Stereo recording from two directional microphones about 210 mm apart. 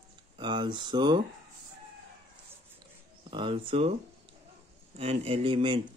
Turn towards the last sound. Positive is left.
turn(degrees=-25)  # may be behind; listen again after turning